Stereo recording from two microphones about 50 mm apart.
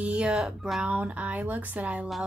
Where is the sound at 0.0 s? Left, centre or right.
Right.